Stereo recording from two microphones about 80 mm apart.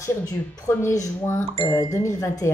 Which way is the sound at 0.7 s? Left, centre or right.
Left.